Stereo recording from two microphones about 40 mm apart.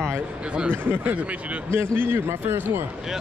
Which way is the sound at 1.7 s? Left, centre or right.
Right.